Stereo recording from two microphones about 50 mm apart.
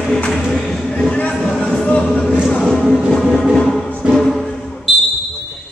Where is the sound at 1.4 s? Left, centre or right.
Centre.